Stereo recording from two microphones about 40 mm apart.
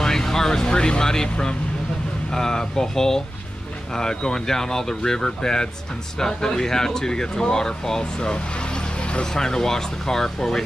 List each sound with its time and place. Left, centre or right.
0.0 s vehicle: centre
2.3 s speech: centre
9.2 s speech: centre